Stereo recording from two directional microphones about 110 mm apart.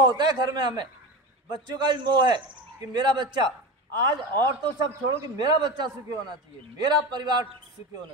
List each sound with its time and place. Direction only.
0.0 s a man's voice: 40° right (ahead or behind)